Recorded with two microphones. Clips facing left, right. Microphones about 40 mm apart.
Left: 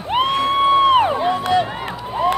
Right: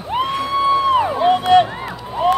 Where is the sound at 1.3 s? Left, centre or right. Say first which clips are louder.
Right 5 dB; right.